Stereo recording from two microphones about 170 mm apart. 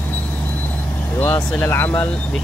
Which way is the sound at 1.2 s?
10° left (ahead or behind).